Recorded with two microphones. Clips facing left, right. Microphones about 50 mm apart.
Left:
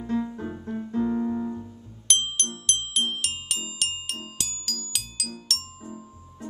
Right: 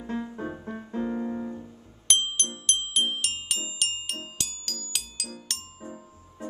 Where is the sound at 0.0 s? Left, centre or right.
Right.